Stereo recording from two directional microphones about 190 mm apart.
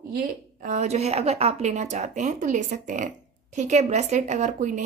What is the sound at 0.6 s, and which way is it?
Speech, 40° right (ahead or behind).